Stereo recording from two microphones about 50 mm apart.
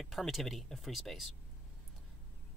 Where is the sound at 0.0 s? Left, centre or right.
Centre.